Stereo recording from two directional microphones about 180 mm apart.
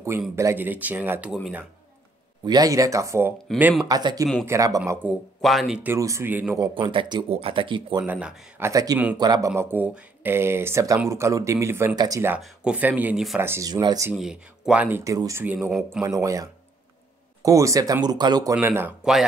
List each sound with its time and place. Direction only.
0.4 s speech: 15° right (ahead or behind)
2.4 s speech: 20° right (ahead or behind)
5.0 s speech: centre (ahead or behind)
5.9 s speech: 15° right (ahead or behind)
6.6 s speech: 25° right (ahead or behind)
8.0 s speech: 5° right (ahead or behind)
8.6 s speech: 20° right (ahead or behind)
9.5 s speech: 10° right (ahead or behind)
12.4 s speech: 5° right (ahead or behind)
13.4 s speech: 15° right (ahead or behind)
14.1 s speech: 5° right (ahead or behind)
16.0 s speech: 15° right (ahead or behind)